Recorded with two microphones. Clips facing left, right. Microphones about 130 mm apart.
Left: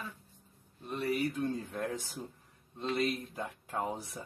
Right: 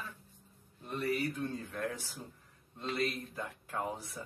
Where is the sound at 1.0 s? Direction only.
20° left (ahead or behind).